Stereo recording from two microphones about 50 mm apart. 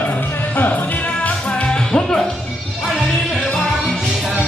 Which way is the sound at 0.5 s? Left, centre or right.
Left.